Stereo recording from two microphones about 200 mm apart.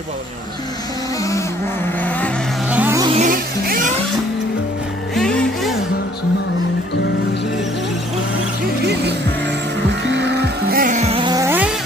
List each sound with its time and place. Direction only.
2.0 s vehicle: 10° left (ahead or behind)
2.7 s music: 10° right (ahead or behind)
3.2 s music: 45° right (ahead or behind)
5.1 s music: centre (ahead or behind)
10.0 s music: 60° right (ahead or behind); by 11.7 s 10° right (ahead or behind)